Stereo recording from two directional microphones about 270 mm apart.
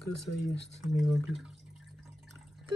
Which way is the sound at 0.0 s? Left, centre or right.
Left.